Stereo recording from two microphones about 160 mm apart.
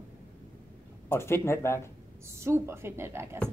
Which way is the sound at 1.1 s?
15° left (ahead or behind).